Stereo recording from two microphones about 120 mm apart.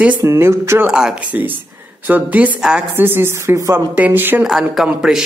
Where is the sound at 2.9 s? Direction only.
20° right (ahead or behind).